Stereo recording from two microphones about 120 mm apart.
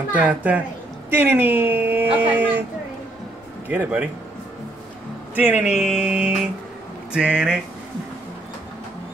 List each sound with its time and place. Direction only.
0.1 s speech: 15° right (ahead or behind)
3.6 s speech: 15° right (ahead or behind)
5.3 s speech: 15° right (ahead or behind)